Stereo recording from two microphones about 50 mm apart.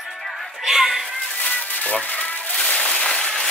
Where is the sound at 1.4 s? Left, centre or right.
Left.